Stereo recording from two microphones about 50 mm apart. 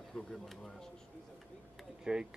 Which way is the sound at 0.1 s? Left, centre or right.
Centre.